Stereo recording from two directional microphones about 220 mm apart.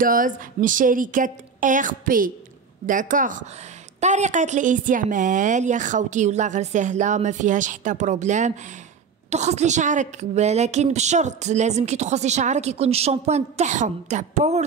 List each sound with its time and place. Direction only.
0.0 s a woman's voice: 40° right (ahead or behind)